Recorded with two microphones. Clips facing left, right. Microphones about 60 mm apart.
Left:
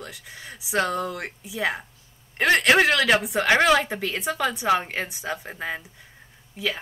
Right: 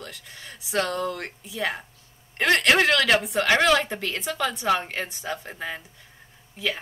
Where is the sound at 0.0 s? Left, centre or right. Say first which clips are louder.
Left 1 dB; centre.